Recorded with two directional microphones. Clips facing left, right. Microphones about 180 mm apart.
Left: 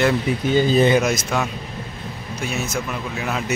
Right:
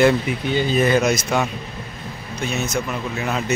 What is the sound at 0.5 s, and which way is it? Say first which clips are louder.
Speech: left 3 dB; 40° left (ahead or behind).